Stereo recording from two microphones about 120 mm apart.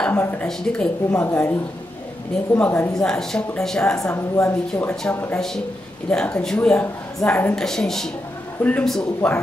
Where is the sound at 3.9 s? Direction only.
25° left (ahead or behind); by 9.4 s 5° left (ahead or behind).